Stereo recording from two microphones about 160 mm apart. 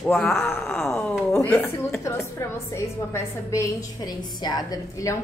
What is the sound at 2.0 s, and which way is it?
A woman's voice, 20° left (ahead or behind).